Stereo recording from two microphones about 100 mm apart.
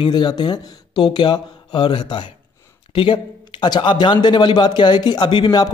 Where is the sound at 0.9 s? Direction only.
55° left (ahead or behind).